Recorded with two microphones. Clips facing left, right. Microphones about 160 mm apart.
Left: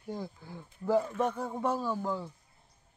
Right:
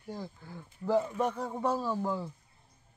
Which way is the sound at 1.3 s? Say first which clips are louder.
Even; centre (ahead or behind).